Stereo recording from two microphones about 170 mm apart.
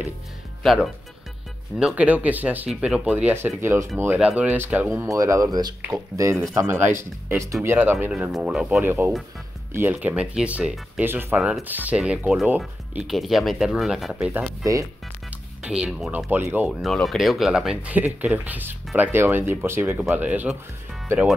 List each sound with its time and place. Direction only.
0.6 s speech: centre (ahead or behind)
14.3 s speech: 20° right (ahead or behind)
15.6 s speech: 5° right (ahead or behind)
16.8 s speech: 5° left (ahead or behind)